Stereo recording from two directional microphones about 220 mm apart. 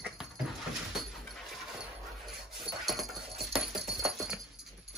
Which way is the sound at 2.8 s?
Centre (ahead or behind).